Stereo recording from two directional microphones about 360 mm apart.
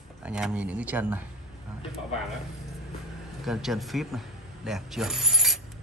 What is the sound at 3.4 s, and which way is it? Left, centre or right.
Speech, centre.